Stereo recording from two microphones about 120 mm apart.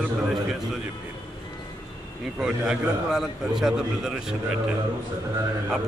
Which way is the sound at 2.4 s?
5° right (ahead or behind).